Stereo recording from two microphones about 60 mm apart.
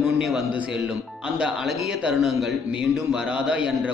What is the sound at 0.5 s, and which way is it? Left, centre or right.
Speech, centre.